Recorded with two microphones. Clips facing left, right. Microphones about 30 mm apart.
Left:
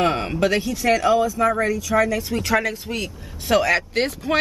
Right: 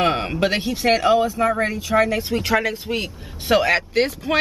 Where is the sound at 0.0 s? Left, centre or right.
Centre.